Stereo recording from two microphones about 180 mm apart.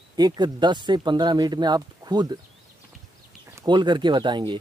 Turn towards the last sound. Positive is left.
turn(degrees=-25)  # may be behind; listen again after turning